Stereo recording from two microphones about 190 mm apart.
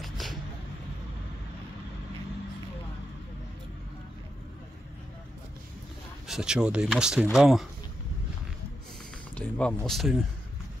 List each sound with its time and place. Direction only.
0.0 s a sound: centre (ahead or behind)
6.2 s speech: 5° right (ahead or behind)
9.3 s speech: 5° left (ahead or behind)